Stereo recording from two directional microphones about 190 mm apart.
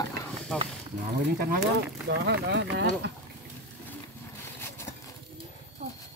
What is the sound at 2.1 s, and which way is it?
Speech, 65° right (ahead or behind).